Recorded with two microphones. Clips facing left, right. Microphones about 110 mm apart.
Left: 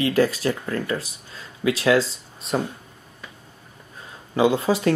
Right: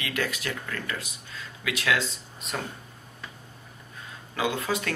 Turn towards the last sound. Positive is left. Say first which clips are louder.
# left 9 dB
turn(degrees=30)  # may be behind; listen again after turning